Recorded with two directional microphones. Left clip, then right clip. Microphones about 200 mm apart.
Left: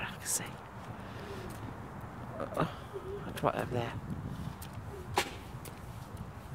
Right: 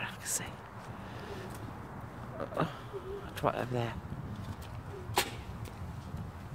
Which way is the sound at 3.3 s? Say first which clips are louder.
Even; centre (ahead or behind).